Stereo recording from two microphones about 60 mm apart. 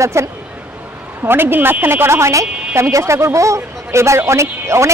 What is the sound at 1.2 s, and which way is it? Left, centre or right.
Speech, right.